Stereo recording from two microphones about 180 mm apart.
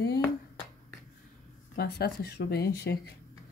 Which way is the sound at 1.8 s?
65° left (ahead or behind).